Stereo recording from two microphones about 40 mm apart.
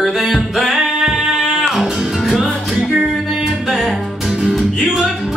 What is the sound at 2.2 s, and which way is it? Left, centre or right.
Music, centre.